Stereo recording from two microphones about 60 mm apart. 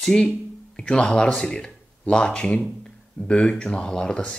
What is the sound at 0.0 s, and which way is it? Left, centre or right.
Speech, centre.